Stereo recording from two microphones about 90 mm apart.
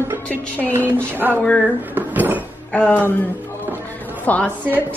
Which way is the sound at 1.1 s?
25° right (ahead or behind).